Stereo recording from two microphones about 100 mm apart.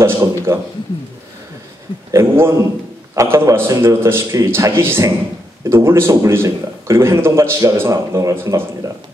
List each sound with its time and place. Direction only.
0.0 s a man's voice: 30° right (ahead or behind)
2.0 s a man's voice: 25° right (ahead or behind)